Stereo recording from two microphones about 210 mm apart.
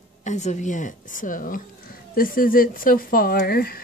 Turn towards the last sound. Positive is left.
turn(degrees=45)  # may be behind; listen again after turning